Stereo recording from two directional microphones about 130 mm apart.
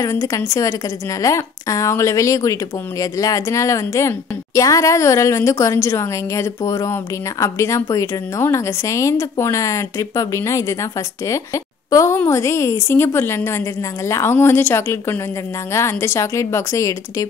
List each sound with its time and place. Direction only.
0.0 s a woman's voice: 25° left (ahead or behind)